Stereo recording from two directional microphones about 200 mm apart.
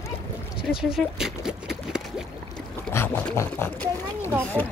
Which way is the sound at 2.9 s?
10° left (ahead or behind).